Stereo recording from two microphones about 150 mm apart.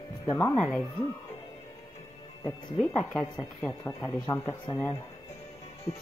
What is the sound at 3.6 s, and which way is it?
Speech, 20° left (ahead or behind).